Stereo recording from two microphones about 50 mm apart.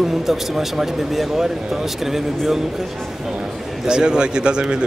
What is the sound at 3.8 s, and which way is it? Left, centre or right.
Speech, centre.